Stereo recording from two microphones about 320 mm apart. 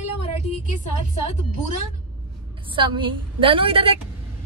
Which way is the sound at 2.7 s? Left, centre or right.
Centre.